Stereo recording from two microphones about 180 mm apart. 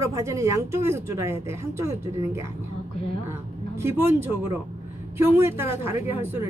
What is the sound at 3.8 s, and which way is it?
Speech, 15° right (ahead or behind).